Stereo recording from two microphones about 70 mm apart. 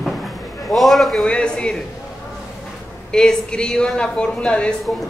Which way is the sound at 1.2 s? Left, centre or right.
Centre.